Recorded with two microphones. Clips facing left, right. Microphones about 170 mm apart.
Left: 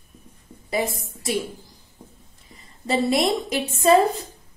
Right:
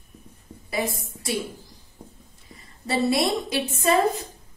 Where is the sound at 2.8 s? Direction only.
20° left (ahead or behind).